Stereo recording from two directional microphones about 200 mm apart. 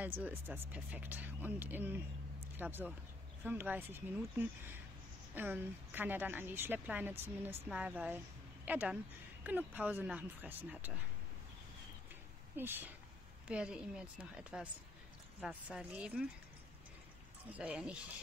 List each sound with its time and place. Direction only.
0.0 s a woman's voice: 10° right (ahead or behind)
2.4 s a sound: 10° right (ahead or behind)
3.4 s a woman's voice: 10° right (ahead or behind)
12.5 s a woman's voice: 10° right (ahead or behind)
17.6 s a woman's voice: 5° right (ahead or behind)